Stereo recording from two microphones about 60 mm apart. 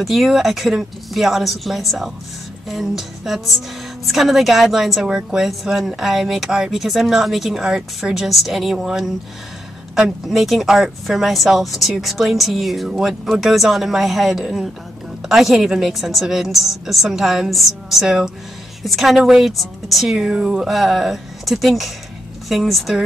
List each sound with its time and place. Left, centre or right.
0.0 s speech: centre
20.2 s speech: centre
20.6 s speech: centre